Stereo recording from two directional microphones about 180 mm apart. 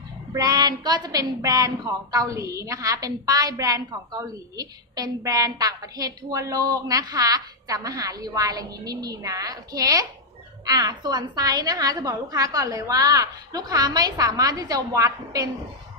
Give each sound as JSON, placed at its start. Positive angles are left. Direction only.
{"t": 0.3, "sound": "a woman's voice", "side_deg": -20}